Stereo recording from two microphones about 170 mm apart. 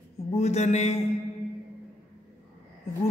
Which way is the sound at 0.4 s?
40° left (ahead or behind).